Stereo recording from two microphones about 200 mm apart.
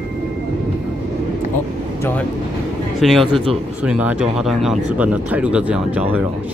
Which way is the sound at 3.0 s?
Centre (ahead or behind).